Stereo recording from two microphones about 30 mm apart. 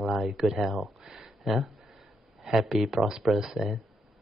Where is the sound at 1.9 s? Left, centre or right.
Centre.